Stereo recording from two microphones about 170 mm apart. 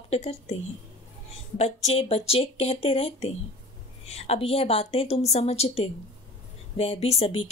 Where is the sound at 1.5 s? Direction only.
35° left (ahead or behind).